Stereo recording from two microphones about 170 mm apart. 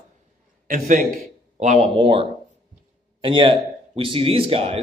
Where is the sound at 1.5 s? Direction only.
40° right (ahead or behind).